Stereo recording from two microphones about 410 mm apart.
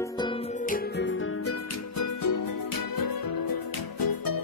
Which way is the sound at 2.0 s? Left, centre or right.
Left.